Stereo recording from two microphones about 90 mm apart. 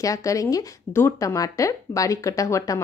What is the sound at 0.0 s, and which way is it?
Speech, 40° left (ahead or behind).